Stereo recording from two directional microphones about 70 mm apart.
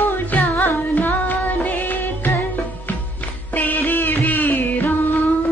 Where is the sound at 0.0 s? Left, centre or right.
Left.